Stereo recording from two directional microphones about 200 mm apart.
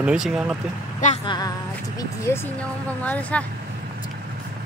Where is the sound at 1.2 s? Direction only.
20° left (ahead or behind).